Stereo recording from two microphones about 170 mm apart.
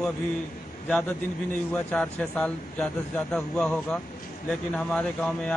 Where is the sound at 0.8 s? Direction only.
5° left (ahead or behind).